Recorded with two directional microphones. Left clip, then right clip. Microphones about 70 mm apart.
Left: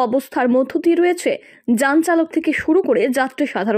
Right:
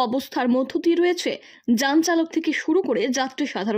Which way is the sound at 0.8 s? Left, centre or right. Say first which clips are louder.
Left 2 dB; right.